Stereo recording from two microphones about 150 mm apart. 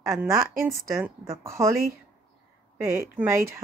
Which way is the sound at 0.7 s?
20° right (ahead or behind).